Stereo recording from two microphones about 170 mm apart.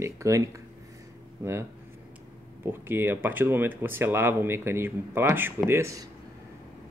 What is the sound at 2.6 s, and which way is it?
Speech, 15° right (ahead or behind).